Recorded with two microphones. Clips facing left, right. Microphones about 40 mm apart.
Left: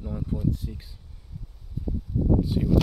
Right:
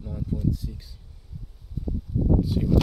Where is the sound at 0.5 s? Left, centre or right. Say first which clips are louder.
Even; left.